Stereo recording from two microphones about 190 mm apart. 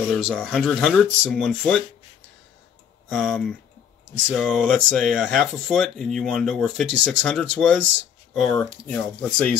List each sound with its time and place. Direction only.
0.0 s speech: centre (ahead or behind)
3.1 s speech: centre (ahead or behind)